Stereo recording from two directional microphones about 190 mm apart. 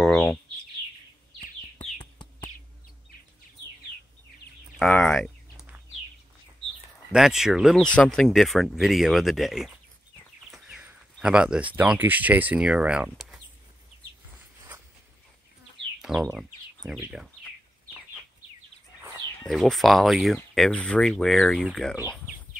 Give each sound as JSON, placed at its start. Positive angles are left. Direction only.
{"t": 0.0, "sound": "bird", "side_deg": 0}
{"t": 1.4, "sound": "bird", "side_deg": 30}
{"t": 4.7, "sound": "a sound", "side_deg": 5}
{"t": 7.1, "sound": "speech", "side_deg": 0}
{"t": 16.0, "sound": "a sound", "side_deg": -5}
{"t": 16.3, "sound": "speech", "side_deg": 0}
{"t": 19.4, "sound": "speech", "side_deg": 0}